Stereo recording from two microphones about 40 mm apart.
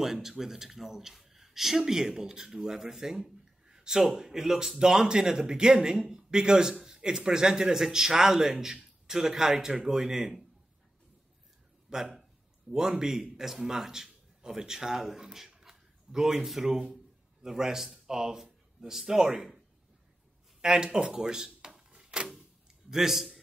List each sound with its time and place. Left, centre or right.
0.0 s a man's voice: centre
11.9 s a man's voice: centre
20.6 s a man's voice: centre
21.5 s drawer open or close: centre
22.8 s a man's voice: centre